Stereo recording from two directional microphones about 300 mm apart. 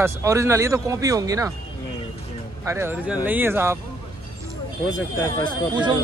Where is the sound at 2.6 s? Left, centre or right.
Centre.